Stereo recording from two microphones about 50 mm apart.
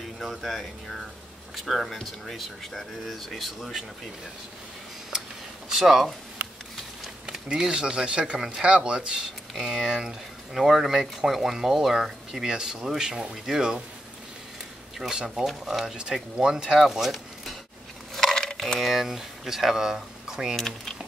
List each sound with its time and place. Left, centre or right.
0.0 s speech: centre
5.7 s speech: centre
7.4 s speech: centre
9.5 s speech: centre
9.8 s speech: centre
15.0 s speech: centre
18.1 s coin: centre
18.8 s speech: centre
20.5 s speech: centre